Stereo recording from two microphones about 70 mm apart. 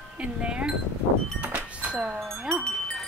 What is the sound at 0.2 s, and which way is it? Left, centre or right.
Speech, centre.